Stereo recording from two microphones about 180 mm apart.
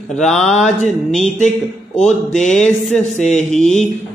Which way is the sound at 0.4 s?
40° left (ahead or behind).